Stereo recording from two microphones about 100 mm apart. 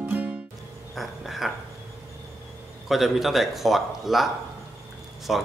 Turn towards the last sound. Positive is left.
turn(degrees=0)  # may be behind; listen again after turning